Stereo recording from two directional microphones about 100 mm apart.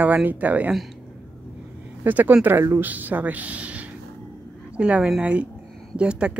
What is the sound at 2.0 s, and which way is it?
A woman's voice, 20° right (ahead or behind).